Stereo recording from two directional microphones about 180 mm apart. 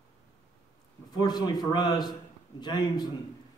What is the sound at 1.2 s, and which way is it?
A man's voice, 20° left (ahead or behind).